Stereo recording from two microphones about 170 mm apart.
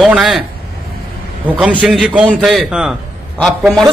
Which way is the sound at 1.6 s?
5° right (ahead or behind).